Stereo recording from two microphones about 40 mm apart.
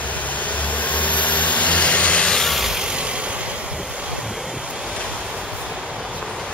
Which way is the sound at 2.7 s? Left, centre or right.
Right.